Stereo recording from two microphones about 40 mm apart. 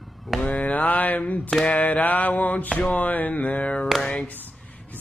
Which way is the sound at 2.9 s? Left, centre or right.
Left.